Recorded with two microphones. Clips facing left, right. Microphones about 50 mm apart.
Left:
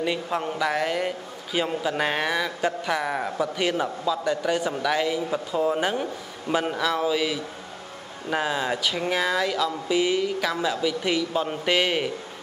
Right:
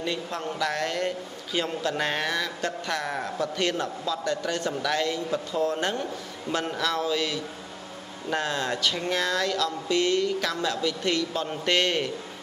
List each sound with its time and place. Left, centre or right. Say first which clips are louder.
0.0 s a man's voice: left 4 dB; centre